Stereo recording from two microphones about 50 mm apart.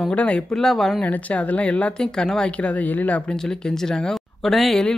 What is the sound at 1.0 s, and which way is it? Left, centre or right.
Speech, left.